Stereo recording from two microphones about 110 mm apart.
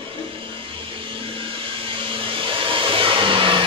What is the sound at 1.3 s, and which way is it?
Vacuum cleaner, 55° right (ahead or behind).